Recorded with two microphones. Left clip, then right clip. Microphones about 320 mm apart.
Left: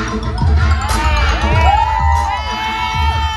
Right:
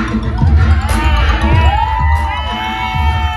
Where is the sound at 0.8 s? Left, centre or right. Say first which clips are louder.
Even; left.